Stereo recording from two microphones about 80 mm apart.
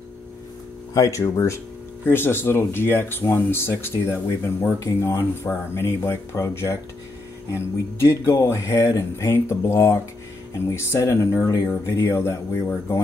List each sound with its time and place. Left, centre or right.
0.9 s speech: left
2.0 s speech: left